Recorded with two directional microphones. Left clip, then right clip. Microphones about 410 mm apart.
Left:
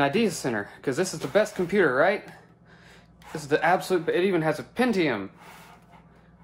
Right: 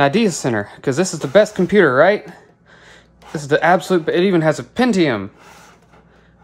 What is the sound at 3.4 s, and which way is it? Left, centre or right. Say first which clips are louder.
Speech: right 8 dB; centre.